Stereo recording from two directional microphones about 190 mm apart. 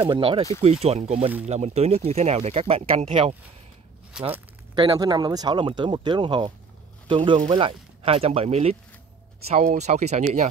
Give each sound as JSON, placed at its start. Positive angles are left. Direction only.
{"t": 0.1, "sound": "speech", "side_deg": -25}
{"t": 4.1, "sound": "speech", "side_deg": -5}
{"t": 4.7, "sound": "speech", "side_deg": -20}